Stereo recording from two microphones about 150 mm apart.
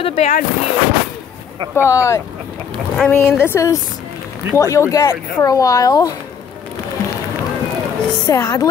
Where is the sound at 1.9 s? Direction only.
20° left (ahead or behind).